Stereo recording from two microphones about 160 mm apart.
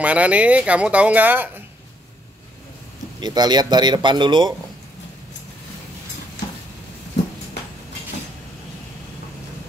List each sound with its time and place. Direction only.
0.0 s speech: 10° right (ahead or behind)
3.2 s speech: 25° right (ahead or behind)